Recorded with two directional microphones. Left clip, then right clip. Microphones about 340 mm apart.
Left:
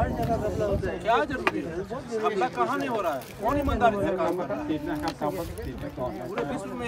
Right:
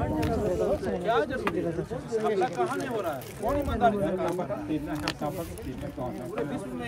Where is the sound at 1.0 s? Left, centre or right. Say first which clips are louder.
Left 4 dB; left.